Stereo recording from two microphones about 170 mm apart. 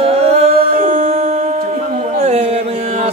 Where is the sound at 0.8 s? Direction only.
40° right (ahead or behind).